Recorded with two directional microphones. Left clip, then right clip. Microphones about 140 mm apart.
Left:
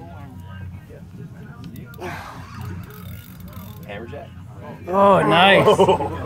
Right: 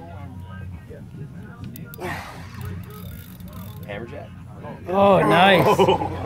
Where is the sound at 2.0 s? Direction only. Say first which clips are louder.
Right 1 dB; 30° right (ahead or behind).